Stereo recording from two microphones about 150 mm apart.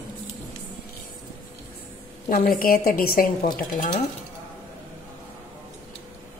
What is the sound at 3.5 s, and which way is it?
Speech, 65° left (ahead or behind).